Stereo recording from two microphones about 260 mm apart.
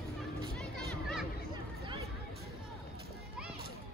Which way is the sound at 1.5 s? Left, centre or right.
Centre.